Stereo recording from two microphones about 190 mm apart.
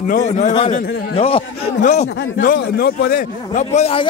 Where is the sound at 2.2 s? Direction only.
50° left (ahead or behind); by 4.0 s 30° left (ahead or behind).